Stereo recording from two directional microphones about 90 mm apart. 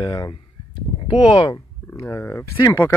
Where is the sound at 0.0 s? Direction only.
45° left (ahead or behind).